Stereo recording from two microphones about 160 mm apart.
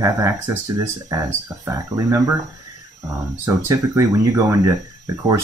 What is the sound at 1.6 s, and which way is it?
Speech, 20° right (ahead or behind).